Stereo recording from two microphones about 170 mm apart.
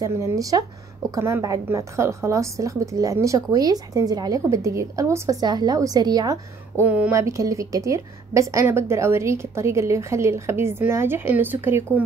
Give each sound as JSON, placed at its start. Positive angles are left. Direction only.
{"t": 0.0, "sound": "a woman's voice", "side_deg": -20}
{"t": 6.8, "sound": "a woman's voice", "side_deg": -10}